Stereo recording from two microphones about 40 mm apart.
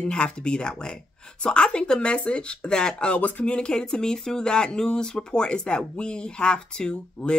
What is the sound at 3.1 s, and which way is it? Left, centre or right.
Speech, left.